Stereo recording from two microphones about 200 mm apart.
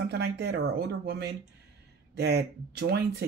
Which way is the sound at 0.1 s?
55° right (ahead or behind).